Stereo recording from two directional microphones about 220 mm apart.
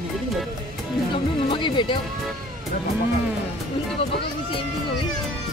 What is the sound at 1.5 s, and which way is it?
Music, 20° left (ahead or behind).